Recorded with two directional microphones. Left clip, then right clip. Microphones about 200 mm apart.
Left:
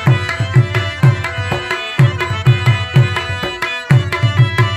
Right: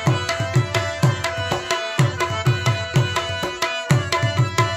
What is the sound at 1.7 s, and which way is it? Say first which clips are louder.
Music: left 3 dB; 45° right (ahead or behind).